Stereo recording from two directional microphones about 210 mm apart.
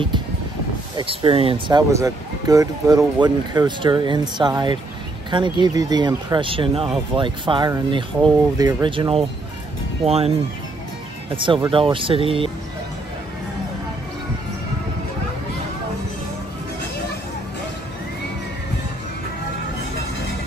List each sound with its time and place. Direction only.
0.9 s speech: 25° right (ahead or behind)